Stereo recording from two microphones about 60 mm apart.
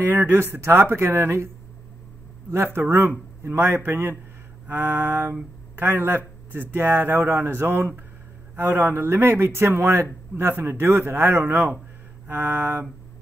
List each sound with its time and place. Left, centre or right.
0.0 s speech: right
2.5 s speech: right